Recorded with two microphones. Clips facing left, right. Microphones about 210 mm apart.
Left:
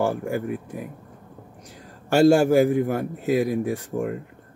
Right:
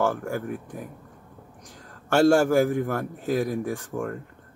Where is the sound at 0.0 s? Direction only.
15° left (ahead or behind).